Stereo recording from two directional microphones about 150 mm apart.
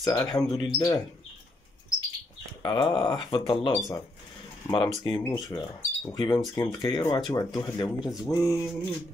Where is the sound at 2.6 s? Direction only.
35° left (ahead or behind).